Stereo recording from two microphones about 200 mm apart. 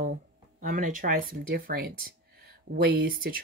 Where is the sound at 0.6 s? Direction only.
40° right (ahead or behind).